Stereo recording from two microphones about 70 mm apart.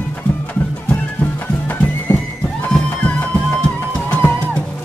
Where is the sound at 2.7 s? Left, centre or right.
Centre.